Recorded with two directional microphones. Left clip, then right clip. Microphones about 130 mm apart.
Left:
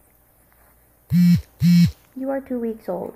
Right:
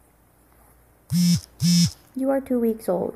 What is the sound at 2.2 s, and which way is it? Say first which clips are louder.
Speech: right 3 dB; 30° right (ahead or behind).